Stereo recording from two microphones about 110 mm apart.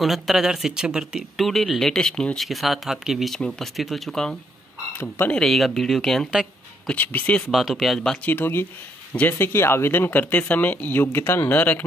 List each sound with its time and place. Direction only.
0.0 s speech: centre (ahead or behind)
6.9 s speech: 15° left (ahead or behind)
7.5 s speech: centre (ahead or behind)
8.3 s speech: 20° left (ahead or behind)